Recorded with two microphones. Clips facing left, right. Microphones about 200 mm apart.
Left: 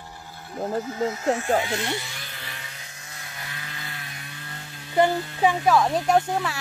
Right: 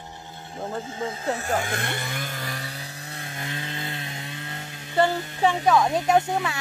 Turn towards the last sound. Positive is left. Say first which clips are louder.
# even
turn(degrees=0)  # may be behind; listen again after turning